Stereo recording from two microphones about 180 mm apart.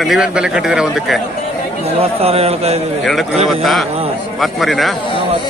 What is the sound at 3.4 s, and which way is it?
A man's voice, centre (ahead or behind).